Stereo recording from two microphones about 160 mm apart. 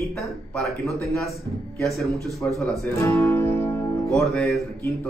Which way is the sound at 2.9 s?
15° left (ahead or behind).